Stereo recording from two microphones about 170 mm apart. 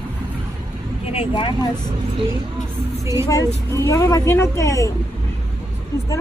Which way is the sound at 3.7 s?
15° left (ahead or behind).